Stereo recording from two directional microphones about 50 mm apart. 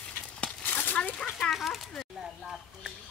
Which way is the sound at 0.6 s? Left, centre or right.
Left.